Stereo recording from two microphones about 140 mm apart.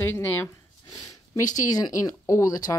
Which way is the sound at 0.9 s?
25° left (ahead or behind).